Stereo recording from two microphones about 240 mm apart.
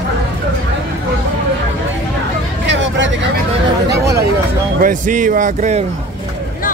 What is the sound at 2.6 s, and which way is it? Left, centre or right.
Vehicle, right.